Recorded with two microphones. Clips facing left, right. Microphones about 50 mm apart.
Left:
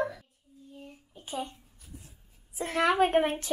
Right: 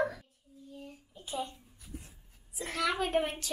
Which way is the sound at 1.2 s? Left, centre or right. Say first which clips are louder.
Left 1 dB; left.